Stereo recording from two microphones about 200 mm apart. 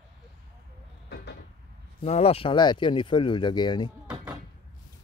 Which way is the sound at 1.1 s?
55° left (ahead or behind).